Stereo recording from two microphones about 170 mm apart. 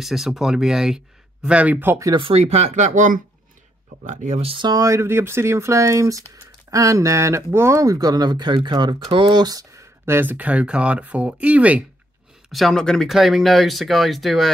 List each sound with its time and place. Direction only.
0.0 s speech: centre (ahead or behind)